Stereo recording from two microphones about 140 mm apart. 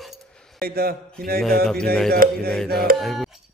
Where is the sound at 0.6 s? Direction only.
90° right.